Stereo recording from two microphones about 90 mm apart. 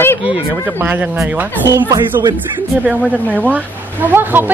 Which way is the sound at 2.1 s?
35° right (ahead or behind).